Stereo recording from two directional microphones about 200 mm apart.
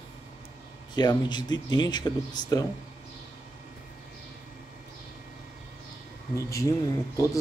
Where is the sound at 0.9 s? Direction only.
20° left (ahead or behind).